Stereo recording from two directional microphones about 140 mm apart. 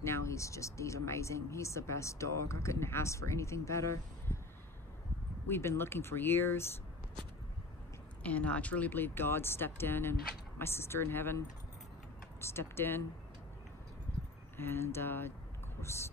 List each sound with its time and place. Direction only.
0.0 s speech: 20° left (ahead or behind)
5.5 s speech: 15° left (ahead or behind)
8.2 s speech: 10° left (ahead or behind)
14.6 s speech: 15° left (ahead or behind)